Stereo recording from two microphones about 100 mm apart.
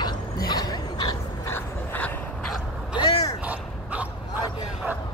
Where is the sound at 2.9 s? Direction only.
40° left (ahead or behind).